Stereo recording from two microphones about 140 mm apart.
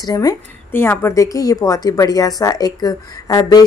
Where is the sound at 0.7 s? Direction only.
15° left (ahead or behind).